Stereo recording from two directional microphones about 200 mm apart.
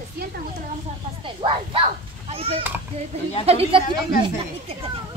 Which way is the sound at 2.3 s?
30° right (ahead or behind).